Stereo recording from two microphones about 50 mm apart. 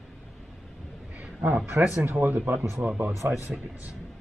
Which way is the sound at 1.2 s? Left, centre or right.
Right.